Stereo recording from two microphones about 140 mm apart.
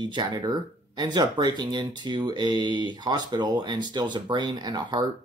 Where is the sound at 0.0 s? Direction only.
30° right (ahead or behind).